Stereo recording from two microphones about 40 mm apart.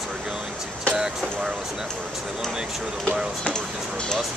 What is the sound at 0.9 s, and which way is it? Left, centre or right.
Speech, centre.